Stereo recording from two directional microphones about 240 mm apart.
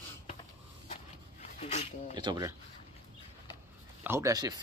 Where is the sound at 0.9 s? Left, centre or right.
Left.